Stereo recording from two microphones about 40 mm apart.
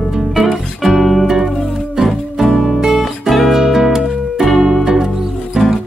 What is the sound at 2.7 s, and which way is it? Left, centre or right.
Music, centre.